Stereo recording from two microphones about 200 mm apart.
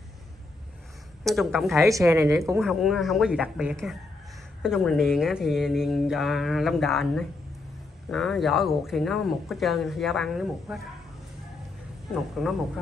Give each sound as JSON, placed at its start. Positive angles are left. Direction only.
{"t": 1.2, "sound": "speech", "side_deg": 0}
{"t": 1.9, "sound": "a woman's voice", "side_deg": -15}
{"t": 2.5, "sound": "speech", "side_deg": 0}
{"t": 12.1, "sound": "speech", "side_deg": 0}